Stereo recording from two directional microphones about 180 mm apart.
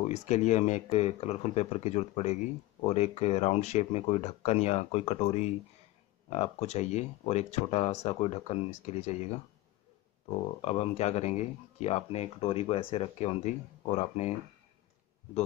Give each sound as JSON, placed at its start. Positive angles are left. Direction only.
{"t": 0.0, "sound": "speech", "side_deg": 40}